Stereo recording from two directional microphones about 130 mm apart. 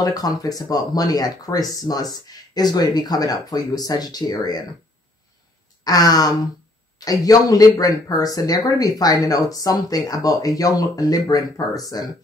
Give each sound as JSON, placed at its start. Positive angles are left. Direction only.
{"t": 0.0, "sound": "speech", "side_deg": 30}
{"t": 5.9, "sound": "speech", "side_deg": 30}